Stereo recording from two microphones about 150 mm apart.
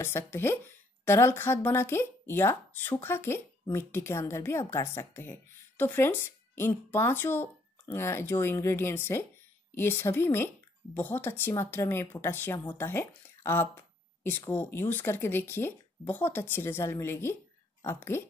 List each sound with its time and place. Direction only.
0.0 s speech: 15° left (ahead or behind)